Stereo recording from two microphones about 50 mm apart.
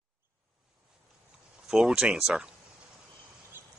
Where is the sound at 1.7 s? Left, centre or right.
Centre.